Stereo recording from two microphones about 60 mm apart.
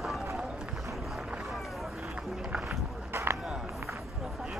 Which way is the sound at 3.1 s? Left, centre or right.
Right.